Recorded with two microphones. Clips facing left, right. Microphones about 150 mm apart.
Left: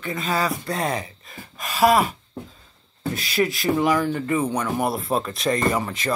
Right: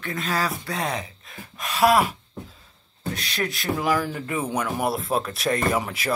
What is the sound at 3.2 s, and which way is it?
Speech, centre (ahead or behind).